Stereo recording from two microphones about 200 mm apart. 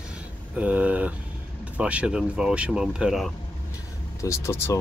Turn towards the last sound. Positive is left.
turn(degrees=15)  # may be behind; listen again after turning